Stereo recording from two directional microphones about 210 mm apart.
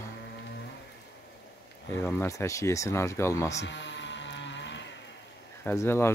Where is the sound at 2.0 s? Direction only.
10° left (ahead or behind).